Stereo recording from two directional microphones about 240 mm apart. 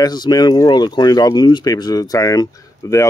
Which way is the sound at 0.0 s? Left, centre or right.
Centre.